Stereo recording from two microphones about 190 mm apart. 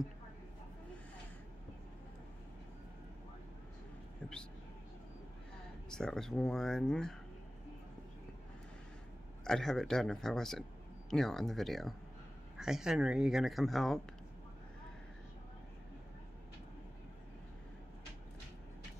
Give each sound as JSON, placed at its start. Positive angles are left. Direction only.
{"t": 5.9, "sound": "speech", "side_deg": 5}
{"t": 9.4, "sound": "speech", "side_deg": 5}